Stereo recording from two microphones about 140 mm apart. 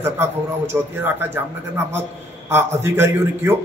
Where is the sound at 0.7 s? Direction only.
10° right (ahead or behind).